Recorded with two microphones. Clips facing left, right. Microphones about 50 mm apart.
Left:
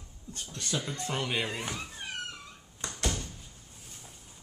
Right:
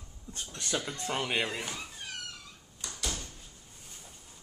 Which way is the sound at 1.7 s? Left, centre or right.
Centre.